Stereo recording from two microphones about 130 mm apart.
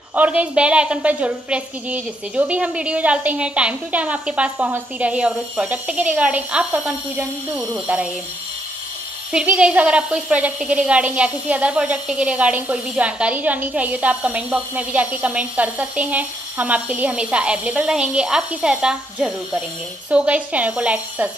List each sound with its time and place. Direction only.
0.1 s a woman's voice: 10° right (ahead or behind)
9.3 s a woman's voice: 10° right (ahead or behind)